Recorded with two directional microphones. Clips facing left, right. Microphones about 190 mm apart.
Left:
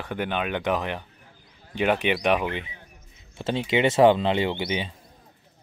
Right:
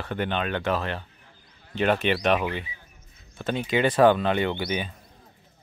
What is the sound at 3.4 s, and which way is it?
Speech, 25° left (ahead or behind).